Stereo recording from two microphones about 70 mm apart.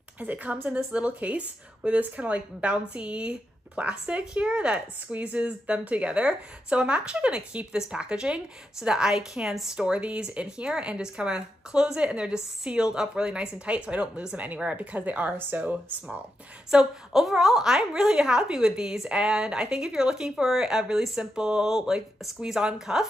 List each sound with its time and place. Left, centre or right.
0.2 s a woman's voice: right
16.7 s speech: centre